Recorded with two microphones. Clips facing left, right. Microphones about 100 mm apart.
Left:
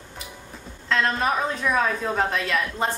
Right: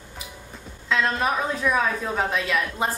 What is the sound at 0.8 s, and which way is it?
A woman's voice, centre (ahead or behind).